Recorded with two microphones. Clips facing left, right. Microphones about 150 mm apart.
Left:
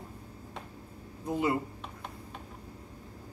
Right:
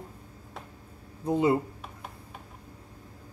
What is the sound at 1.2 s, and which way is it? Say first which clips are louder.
Speech: right 5 dB; 25° right (ahead or behind).